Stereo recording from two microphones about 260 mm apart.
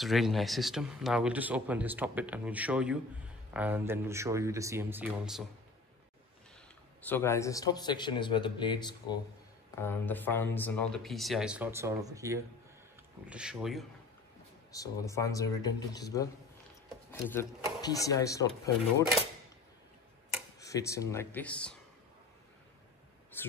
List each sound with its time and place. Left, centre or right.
0.0 s speech: centre
7.0 s a man's voice: centre
14.7 s a man's voice: centre
20.6 s a man's voice: centre
23.3 s a sound: centre